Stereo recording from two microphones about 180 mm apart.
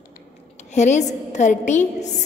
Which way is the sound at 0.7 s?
40° left (ahead or behind).